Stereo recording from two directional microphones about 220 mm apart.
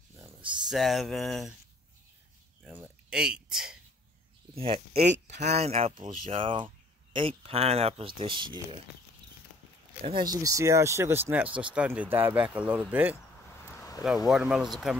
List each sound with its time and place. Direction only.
0.7 s speech: centre (ahead or behind)
2.6 s speech: 5° right (ahead or behind)
4.6 s speech: 25° right (ahead or behind)
10.0 s speech: 20° right (ahead or behind)
13.7 s a sound: 15° left (ahead or behind)
14.0 s speech: centre (ahead or behind)